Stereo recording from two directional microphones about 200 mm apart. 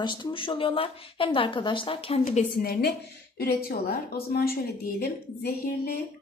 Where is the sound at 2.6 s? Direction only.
50° left (ahead or behind).